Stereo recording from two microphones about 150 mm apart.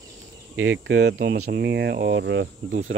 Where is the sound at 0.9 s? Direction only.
90° right.